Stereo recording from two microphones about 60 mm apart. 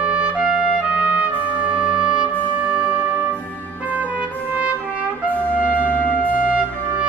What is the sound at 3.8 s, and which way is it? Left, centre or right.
Trumpet, right.